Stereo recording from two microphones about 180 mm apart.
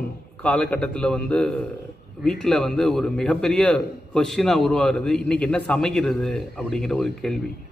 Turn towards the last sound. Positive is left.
turn(degrees=0)  # may be behind; listen again after turning